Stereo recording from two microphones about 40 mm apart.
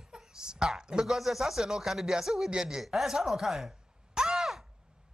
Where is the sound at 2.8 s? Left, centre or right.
Centre.